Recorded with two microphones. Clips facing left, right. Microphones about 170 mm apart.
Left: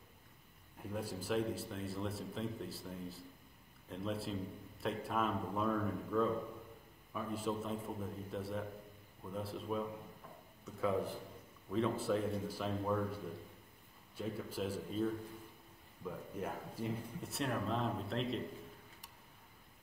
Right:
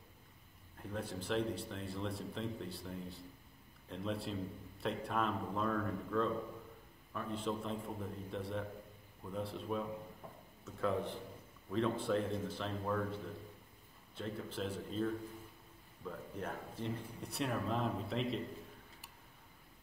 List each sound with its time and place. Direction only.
0.7 s a man's voice: 5° left (ahead or behind)
14.1 s a man's voice: 5° left (ahead or behind)